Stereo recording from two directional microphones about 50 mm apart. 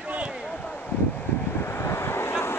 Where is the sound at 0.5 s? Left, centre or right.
Left.